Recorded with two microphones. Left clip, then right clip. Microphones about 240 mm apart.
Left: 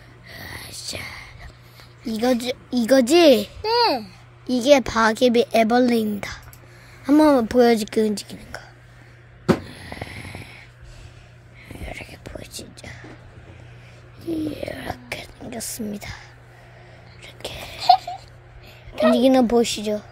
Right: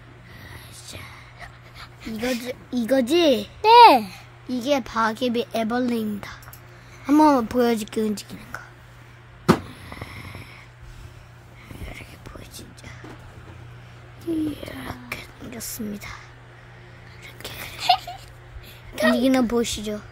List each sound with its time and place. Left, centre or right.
0.3 s whispering: left
2.1 s a woman's voice: left
3.6 s a child's voice: right
4.5 s a woman's voice: centre
9.7 s snoring: centre
11.7 s whispering: centre
14.3 s whispering: centre
17.7 s a sound: centre
19.1 s speech: centre